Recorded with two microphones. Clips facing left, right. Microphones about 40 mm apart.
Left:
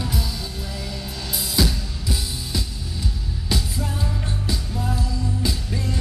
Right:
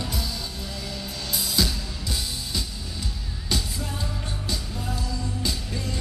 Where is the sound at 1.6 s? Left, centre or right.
Centre.